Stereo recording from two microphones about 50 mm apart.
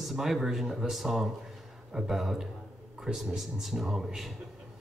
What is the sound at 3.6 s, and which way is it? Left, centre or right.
Speech, centre.